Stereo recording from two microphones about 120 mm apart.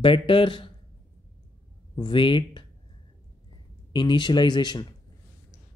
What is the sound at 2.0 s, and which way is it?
Speech, 45° left (ahead or behind).